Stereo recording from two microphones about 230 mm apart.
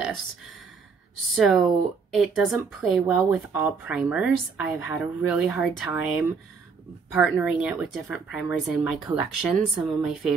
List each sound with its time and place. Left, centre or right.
1.3 s speech: centre